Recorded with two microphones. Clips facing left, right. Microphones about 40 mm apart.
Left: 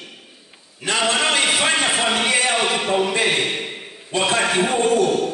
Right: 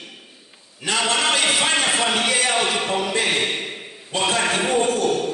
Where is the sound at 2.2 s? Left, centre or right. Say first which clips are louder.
Left 2 dB; left.